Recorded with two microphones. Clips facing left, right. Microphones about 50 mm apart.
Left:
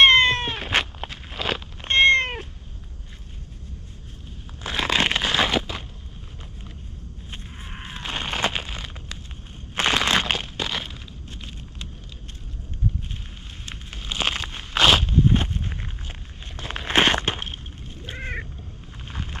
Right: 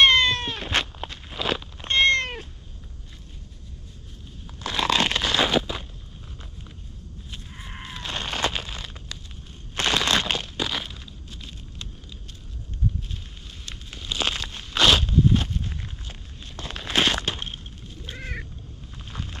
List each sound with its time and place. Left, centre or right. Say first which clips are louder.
0.0 s cat: left 3 dB; left
0.7 s walk: left 1 dB; centre
1.8 s cat: left 4 dB; left
4.6 s crumpling: even; centre
5.5 s a sound: right 1 dB; left
7.8 s a sound: left 2 dB; left
9.8 s crumpling: left 2 dB; centre
13.7 s a sound: even; left
14.2 s a sound: left 2 dB; centre
15.1 s walk: even; left
16.6 s crumpling: left 3 dB; left
17.8 s cat: left 4 dB; left
18.9 s vehicle: left 1 dB; left